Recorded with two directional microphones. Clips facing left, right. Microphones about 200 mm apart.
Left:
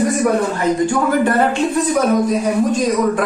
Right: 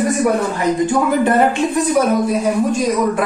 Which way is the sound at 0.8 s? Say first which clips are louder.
Right 1 dB; 20° right (ahead or behind).